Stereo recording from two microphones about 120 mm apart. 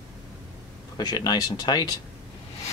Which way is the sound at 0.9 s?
35° left (ahead or behind).